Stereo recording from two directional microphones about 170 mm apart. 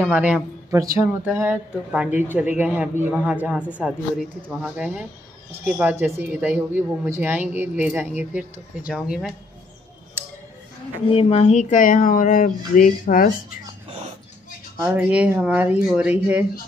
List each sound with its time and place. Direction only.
0.0 s a man's voice: 10° right (ahead or behind)
11.1 s speech: 35° left (ahead or behind); by 13.3 s 55° left (ahead or behind)
14.8 s a man's voice: 5° right (ahead or behind)